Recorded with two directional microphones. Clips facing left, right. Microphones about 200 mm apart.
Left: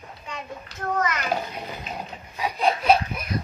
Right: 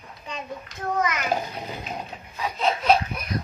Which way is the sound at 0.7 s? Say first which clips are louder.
Even; 35° left (ahead or behind).